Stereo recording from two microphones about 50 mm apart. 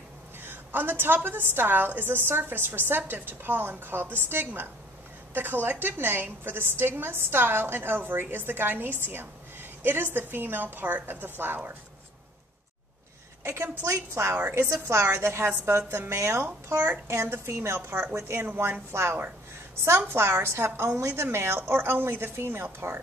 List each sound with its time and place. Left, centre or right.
0.4 s a woman's voice: right
13.6 s a woman's voice: right
14.5 s a woman's voice: right
16.7 s a child's voice: right
17.6 s a woman's voice: right